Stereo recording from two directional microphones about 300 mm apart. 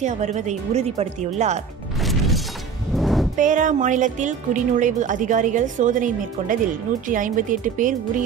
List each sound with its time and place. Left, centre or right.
0.0 s speech: right
2.0 s music: centre
3.3 s speech: right